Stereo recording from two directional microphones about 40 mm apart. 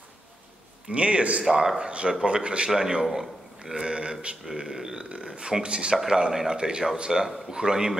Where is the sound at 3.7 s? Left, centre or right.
Right.